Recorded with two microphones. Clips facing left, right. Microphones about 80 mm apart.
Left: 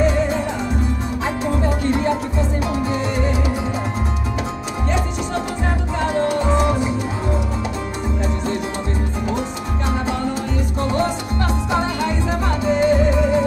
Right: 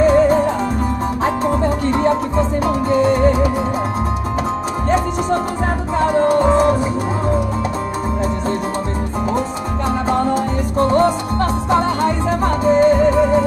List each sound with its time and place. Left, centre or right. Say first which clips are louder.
0.0 s music: right 7 dB; right
4.8 s music: right 6 dB; right
10.8 s music: right 8 dB; right